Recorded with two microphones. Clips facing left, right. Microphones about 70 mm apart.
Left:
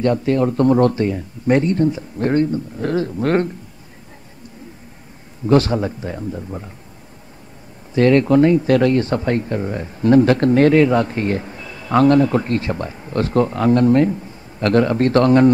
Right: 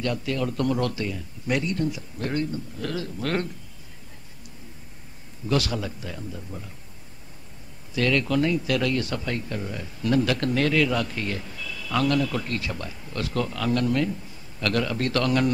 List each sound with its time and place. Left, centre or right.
0.0 s speech: left
5.5 s speech: left
7.9 s speech: left